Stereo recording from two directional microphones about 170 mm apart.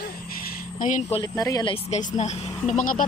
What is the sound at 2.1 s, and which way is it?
Speech, 40° left (ahead or behind).